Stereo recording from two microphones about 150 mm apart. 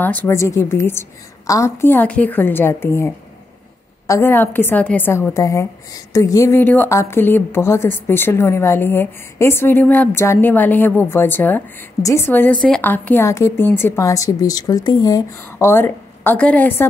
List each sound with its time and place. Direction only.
0.0 s a woman's voice: 10° left (ahead or behind)
4.1 s a woman's voice: 15° left (ahead or behind)